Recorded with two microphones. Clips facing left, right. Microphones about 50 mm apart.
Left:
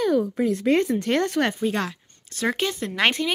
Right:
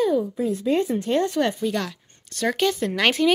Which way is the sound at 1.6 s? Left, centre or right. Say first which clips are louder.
Left 1 dB; left.